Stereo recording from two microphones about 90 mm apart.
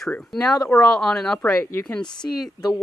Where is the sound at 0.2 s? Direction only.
5° left (ahead or behind).